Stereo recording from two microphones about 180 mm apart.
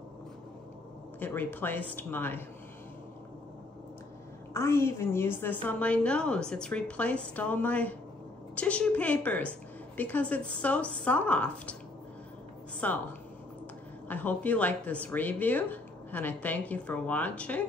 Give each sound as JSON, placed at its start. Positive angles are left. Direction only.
{"t": 1.2, "sound": "speech", "side_deg": 10}
{"t": 4.6, "sound": "speech", "side_deg": 15}
{"t": 12.8, "sound": "speech", "side_deg": 10}
{"t": 14.0, "sound": "speech", "side_deg": 10}